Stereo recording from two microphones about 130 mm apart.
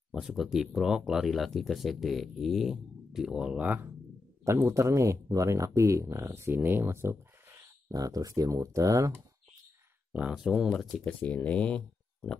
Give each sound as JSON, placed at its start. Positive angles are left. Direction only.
{"t": 0.1, "sound": "speech", "side_deg": -5}
{"t": 4.6, "sound": "speech", "side_deg": -20}
{"t": 10.1, "sound": "speech", "side_deg": -5}
{"t": 11.1, "sound": "speech", "side_deg": 10}